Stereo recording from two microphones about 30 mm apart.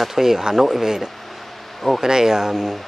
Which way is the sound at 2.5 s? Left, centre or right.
Centre.